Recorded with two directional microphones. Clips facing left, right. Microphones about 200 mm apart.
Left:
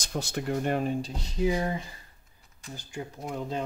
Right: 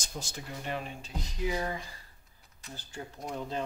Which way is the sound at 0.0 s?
65° left (ahead or behind).